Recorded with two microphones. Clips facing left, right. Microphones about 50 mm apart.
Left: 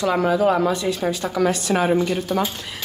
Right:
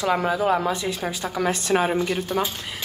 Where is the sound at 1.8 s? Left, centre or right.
Centre.